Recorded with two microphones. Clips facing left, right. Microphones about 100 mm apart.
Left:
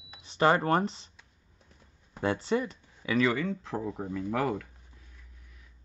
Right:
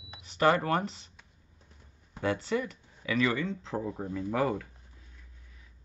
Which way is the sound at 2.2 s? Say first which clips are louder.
Left 2 dB; 30° left (ahead or behind).